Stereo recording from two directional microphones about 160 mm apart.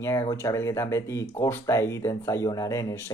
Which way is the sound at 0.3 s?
20° left (ahead or behind).